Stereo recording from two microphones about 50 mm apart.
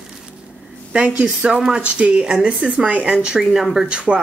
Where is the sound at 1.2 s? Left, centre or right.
Centre.